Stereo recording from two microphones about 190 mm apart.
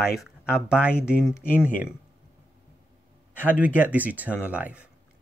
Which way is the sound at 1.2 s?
15° left (ahead or behind).